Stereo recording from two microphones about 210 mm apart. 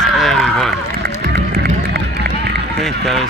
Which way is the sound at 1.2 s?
50° right (ahead or behind).